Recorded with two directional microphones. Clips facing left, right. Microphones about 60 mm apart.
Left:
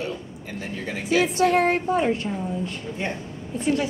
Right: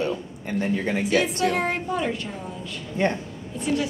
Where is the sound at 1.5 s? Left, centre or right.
Left.